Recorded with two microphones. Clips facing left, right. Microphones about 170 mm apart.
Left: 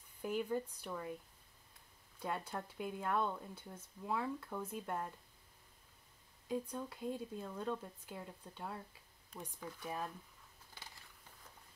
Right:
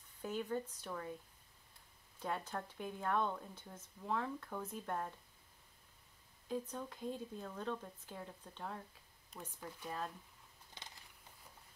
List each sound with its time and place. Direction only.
0.2 s speech: 10° left (ahead or behind)
2.2 s speech: 10° left (ahead or behind)
6.5 s speech: 10° left (ahead or behind)